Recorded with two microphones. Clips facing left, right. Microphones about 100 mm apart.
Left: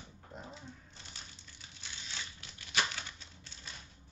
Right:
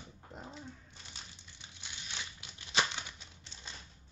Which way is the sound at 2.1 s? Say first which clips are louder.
Right 2 dB; 20° right (ahead or behind).